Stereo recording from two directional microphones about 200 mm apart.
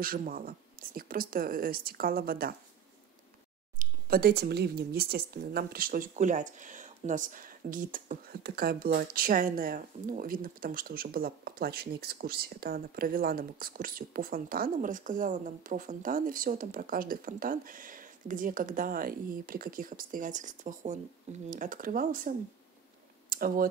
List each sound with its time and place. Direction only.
0.0 s speech: 45° right (ahead or behind)
3.7 s speech: 45° right (ahead or behind)
23.3 s speech: 45° right (ahead or behind)